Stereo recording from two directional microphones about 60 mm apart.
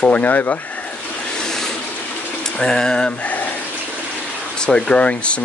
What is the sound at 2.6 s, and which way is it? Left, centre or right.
Speech, centre.